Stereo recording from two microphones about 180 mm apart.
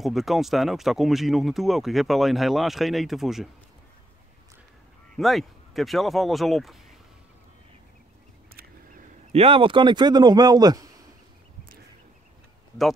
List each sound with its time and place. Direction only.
0.0 s speech: centre (ahead or behind)
5.1 s speech: centre (ahead or behind)
9.3 s speech: 30° right (ahead or behind)